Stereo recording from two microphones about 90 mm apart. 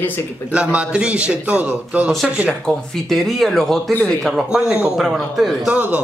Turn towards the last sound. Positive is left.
turn(degrees=-15)  # may be behind; listen again after turning